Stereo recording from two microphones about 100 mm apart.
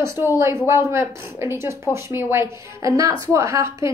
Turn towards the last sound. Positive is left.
turn(degrees=-30)  # may be behind; listen again after turning